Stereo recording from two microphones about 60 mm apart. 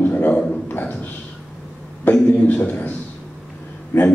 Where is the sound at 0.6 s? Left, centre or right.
Left.